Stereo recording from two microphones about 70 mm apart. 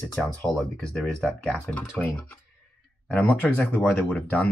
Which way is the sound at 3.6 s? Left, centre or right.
Left.